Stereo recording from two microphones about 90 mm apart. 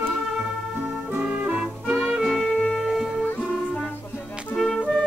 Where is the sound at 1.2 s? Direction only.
15° right (ahead or behind).